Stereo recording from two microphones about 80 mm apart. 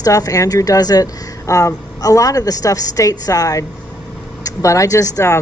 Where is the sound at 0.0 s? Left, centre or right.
Left.